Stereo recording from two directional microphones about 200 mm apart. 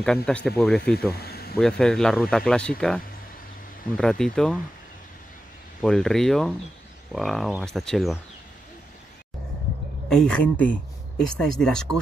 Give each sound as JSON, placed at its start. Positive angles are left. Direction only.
{"t": 0.0, "sound": "speech", "side_deg": 5}
{"t": 1.1, "sound": "speech", "side_deg": 50}
{"t": 1.6, "sound": "speech", "side_deg": 5}
{"t": 3.9, "sound": "speech", "side_deg": 5}
{"t": 5.8, "sound": "speech", "side_deg": 0}
{"t": 10.0, "sound": "speech", "side_deg": 5}